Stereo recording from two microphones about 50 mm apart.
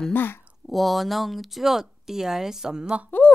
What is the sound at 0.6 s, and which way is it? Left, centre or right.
Speech, centre.